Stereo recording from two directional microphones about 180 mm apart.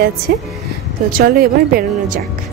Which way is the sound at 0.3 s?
55° right (ahead or behind).